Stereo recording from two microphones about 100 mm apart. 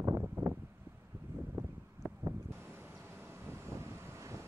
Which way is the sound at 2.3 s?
25° right (ahead or behind).